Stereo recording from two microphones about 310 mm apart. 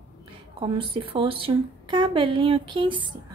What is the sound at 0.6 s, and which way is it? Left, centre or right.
A woman's voice, centre.